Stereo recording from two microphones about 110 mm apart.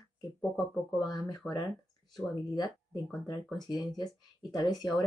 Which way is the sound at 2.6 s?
Centre (ahead or behind).